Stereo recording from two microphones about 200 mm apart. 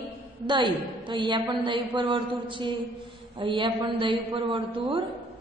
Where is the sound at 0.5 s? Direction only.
25° right (ahead or behind).